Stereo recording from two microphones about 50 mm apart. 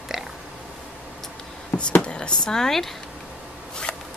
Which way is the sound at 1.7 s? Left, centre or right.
Left.